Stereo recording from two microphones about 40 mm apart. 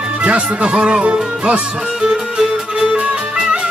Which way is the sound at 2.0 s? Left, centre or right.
Centre.